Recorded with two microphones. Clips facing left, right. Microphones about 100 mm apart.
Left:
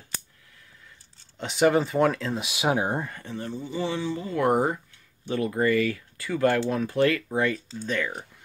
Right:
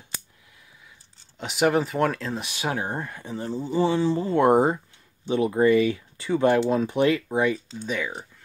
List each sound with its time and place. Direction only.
1.4 s speech: 5° right (ahead or behind); by 3.0 s 15° left (ahead or behind)
3.2 s speech: 20° right (ahead or behind)